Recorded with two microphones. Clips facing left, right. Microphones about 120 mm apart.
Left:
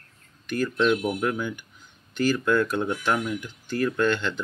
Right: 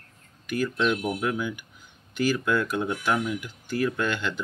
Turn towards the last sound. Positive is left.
turn(degrees=-10)  # may be behind; listen again after turning